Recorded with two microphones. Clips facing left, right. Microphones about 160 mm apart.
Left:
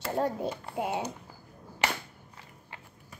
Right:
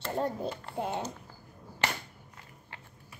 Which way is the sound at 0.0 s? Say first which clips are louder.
Left 2 dB; 10° left (ahead or behind).